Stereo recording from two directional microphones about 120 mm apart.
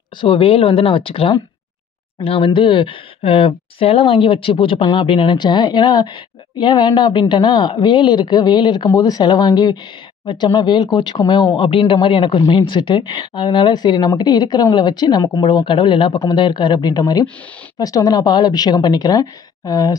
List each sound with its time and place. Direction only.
0.2 s speech: 45° left (ahead or behind)